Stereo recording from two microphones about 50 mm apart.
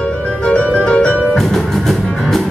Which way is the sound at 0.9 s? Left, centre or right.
Left.